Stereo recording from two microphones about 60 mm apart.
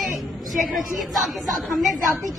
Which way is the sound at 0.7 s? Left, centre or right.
Centre.